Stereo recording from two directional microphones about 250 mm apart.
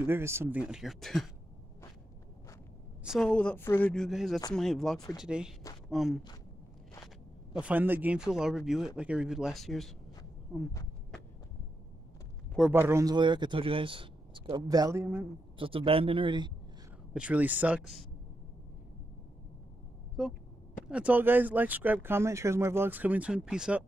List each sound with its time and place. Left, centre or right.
0.0 s speech: centre
3.0 s speech: centre
7.5 s speech: centre
12.5 s speech: centre
15.5 s a man's voice: right
17.1 s speech: centre
20.9 s speech: centre